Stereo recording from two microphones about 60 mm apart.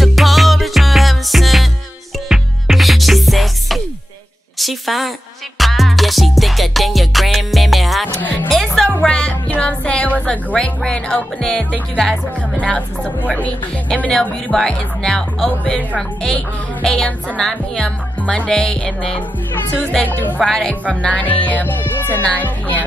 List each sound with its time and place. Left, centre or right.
0.0 s music: centre
4.6 s a sound: centre
5.6 s music: centre; by 10.2 s left
10.3 s speech: left
14.1 s speech: centre
18.2 s music: left
18.5 s speech: centre
20.0 s speech: left
20.3 s speech: centre
20.8 s speech: left